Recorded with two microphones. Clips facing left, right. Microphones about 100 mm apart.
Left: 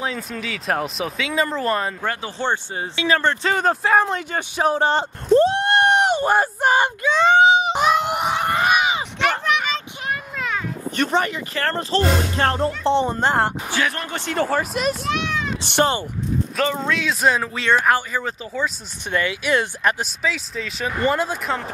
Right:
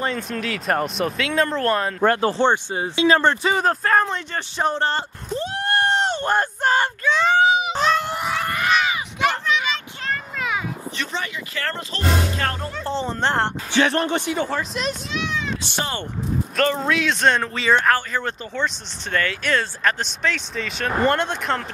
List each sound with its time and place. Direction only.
0.0 s speech: centre (ahead or behind)
2.0 s speech: 50° right (ahead or behind)
2.3 s speech: 25° right (ahead or behind)
3.4 s speech: centre (ahead or behind)
5.5 s a sound: 20° left (ahead or behind)
9.4 s a sound: 60° left (ahead or behind)
10.3 s a sound: 5° right (ahead or behind)
11.0 s speech: 50° left (ahead or behind); by 12.9 s 30° left (ahead or behind)
13.0 s speech: 10° left (ahead or behind)
13.7 s speech: 25° right (ahead or behind)
14.5 s speech: 5° left (ahead or behind)
15.0 s a sound: 55° left (ahead or behind)
16.5 s speech: centre (ahead or behind)